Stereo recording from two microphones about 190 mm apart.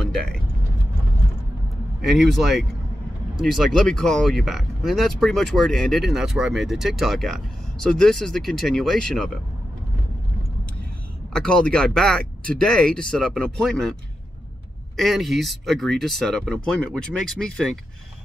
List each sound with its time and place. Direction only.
2.0 s speech: centre (ahead or behind)
11.3 s speech: 5° left (ahead or behind)
15.0 s speech: centre (ahead or behind)